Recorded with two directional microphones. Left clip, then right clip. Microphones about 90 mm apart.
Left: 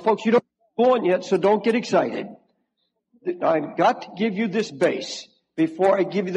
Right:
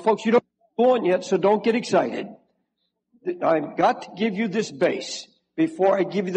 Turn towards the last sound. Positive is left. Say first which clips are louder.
# left 1 dB
turn(degrees=35)  # may be behind; listen again after turning